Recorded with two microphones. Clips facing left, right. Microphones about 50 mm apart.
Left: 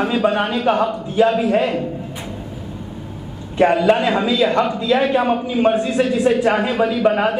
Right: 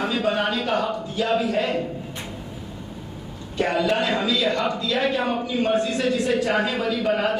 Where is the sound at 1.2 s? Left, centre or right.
Centre.